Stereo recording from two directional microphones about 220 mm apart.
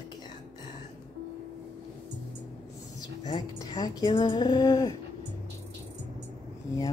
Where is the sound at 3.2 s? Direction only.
20° left (ahead or behind).